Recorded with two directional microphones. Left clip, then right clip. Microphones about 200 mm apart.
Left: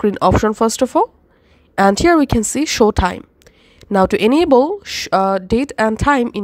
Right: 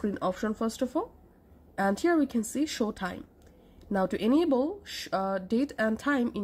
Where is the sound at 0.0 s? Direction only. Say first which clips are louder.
Left 17 dB; 40° left (ahead or behind).